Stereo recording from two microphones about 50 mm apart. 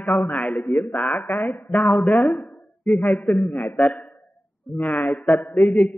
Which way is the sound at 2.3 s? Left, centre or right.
Left.